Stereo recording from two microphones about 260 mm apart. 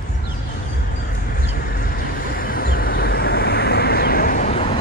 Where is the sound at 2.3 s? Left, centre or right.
Left.